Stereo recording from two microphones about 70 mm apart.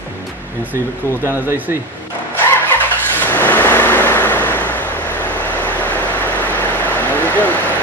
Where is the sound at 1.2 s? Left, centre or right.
Right.